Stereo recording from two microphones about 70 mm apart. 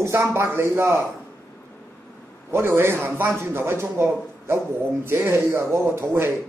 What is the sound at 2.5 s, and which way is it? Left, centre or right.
Speech, right.